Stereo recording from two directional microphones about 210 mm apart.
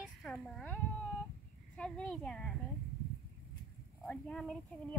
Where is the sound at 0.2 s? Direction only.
Centre (ahead or behind).